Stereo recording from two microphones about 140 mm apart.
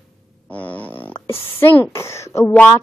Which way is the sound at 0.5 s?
10° left (ahead or behind).